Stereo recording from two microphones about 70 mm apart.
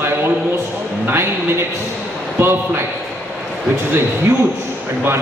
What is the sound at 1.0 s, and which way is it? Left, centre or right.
Speech, right.